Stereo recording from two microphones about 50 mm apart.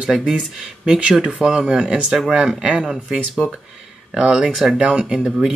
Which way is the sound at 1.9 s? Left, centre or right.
Right.